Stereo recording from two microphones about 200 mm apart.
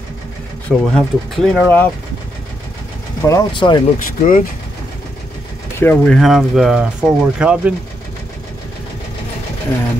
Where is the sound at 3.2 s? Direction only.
20° left (ahead or behind).